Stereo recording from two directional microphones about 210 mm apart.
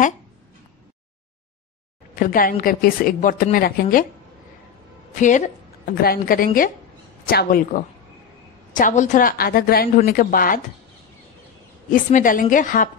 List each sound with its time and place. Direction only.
2.1 s a woman's voice: 40° left (ahead or behind)
6.0 s a woman's voice: 40° left (ahead or behind)
11.9 s a woman's voice: 40° left (ahead or behind)